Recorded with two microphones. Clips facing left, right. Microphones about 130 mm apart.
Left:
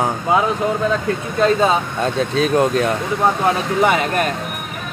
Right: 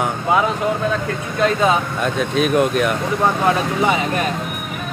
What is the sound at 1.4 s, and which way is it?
Speech, 30° left (ahead or behind).